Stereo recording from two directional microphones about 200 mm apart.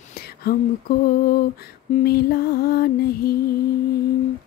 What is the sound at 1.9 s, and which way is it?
Music, 50° left (ahead or behind).